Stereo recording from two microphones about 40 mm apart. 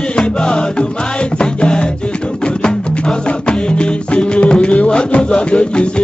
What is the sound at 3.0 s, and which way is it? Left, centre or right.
Music, left.